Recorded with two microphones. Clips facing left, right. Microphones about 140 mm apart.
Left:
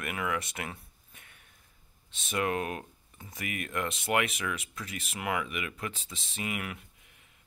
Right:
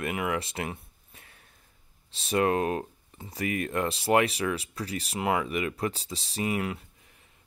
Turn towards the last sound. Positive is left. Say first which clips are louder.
# right 7 dB
turn(degrees=-30)  # may be behind; listen again after turning